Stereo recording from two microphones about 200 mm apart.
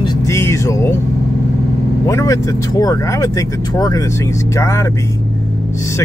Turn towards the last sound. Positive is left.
turn(degrees=15)  # may be behind; listen again after turning